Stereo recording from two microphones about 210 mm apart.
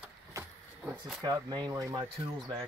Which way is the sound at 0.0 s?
10° right (ahead or behind).